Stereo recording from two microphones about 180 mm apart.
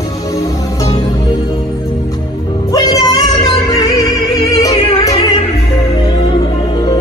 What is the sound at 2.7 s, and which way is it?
Music, 20° left (ahead or behind).